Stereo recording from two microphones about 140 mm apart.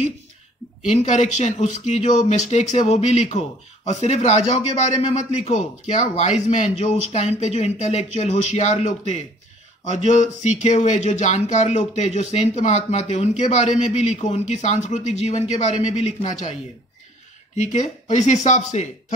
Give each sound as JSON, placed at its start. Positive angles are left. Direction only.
{"t": 0.8, "sound": "speech", "side_deg": 55}
{"t": 17.6, "sound": "speech", "side_deg": 60}